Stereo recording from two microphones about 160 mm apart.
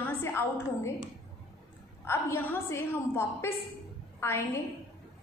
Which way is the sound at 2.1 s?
15° left (ahead or behind).